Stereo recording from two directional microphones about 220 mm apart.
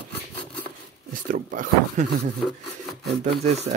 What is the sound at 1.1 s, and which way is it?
Speech, 35° right (ahead or behind).